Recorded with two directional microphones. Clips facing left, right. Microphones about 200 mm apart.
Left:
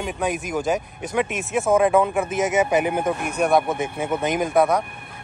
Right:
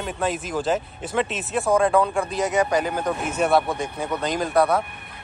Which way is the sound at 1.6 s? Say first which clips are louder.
Left 2 dB; 5° left (ahead or behind).